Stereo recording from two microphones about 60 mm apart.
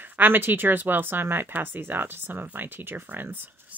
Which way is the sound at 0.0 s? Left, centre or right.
Right.